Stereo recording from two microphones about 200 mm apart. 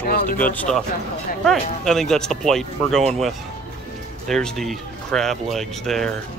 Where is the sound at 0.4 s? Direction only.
10° left (ahead or behind).